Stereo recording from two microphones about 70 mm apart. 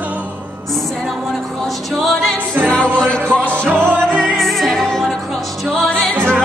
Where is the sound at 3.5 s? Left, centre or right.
Right.